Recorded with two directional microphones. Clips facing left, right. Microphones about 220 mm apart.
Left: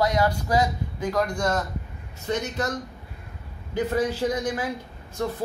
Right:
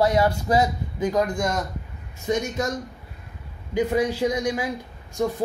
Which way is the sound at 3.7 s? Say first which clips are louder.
Right 2 dB; 15° right (ahead or behind).